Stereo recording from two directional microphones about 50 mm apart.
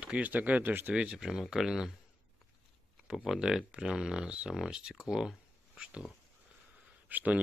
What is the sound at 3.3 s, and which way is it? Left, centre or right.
Speech, centre.